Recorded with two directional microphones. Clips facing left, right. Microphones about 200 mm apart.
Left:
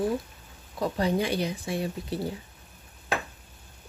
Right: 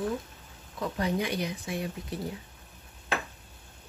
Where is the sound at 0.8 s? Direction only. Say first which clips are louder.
Left 4 dB; 30° left (ahead or behind).